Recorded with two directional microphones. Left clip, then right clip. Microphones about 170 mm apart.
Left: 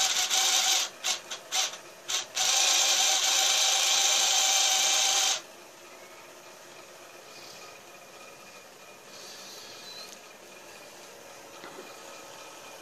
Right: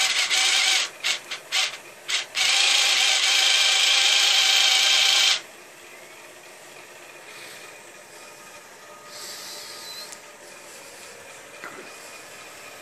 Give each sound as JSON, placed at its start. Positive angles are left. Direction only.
{"t": 0.0, "sound": "wood", "side_deg": 45}